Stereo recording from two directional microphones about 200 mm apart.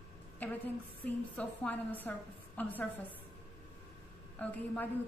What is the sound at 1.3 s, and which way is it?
A woman's voice, 5° left (ahead or behind).